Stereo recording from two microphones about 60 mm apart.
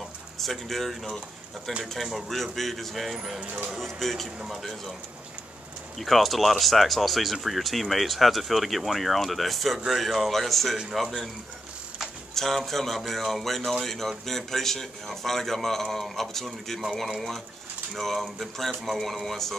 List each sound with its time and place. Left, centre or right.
0.4 s speech: centre
3.3 s speech: centre
3.7 s speech: centre
4.4 s speech: centre
5.9 s speech: centre
12.4 s speech: centre
17.9 s speech: centre